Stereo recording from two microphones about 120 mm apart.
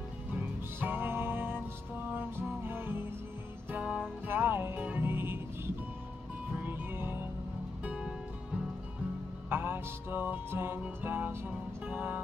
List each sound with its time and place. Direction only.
0.7 s music: 15° right (ahead or behind)
6.6 s music: 20° right (ahead or behind)
9.5 s music: 15° right (ahead or behind)